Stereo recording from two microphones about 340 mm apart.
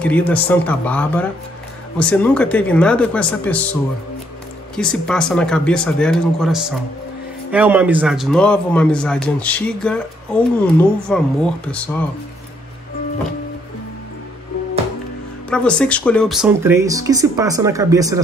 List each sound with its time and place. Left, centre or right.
0.0 s speech: centre
4.7 s speech: centre
15.5 s speech: centre